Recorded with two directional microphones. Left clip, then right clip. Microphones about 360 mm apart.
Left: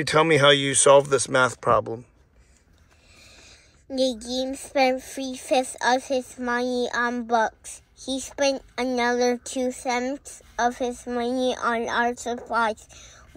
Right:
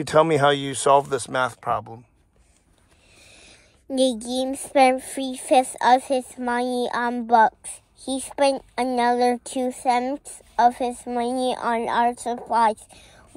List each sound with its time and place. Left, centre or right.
0.0 s speech: centre
3.2 s a woman's voice: centre